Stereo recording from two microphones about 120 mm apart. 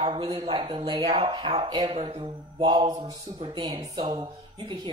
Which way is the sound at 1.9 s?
55° right (ahead or behind).